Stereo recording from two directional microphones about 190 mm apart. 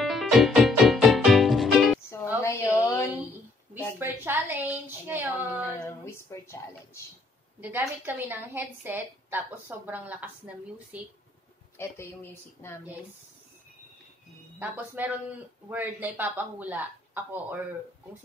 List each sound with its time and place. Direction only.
0.0 s music: centre (ahead or behind)
2.4 s a sound: 15° left (ahead or behind)
4.0 s a woman's voice: 10° right (ahead or behind)
5.9 s speech: 15° left (ahead or behind)
7.6 s a woman's voice: 10° right (ahead or behind)
11.8 s speech: 15° left (ahead or behind)
15.0 s a woman's voice: 10° right (ahead or behind)